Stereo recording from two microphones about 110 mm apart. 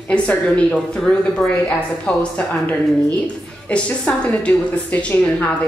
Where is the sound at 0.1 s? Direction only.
10° left (ahead or behind).